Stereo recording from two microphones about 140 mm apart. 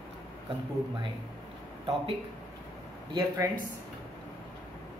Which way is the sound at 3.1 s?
30° right (ahead or behind).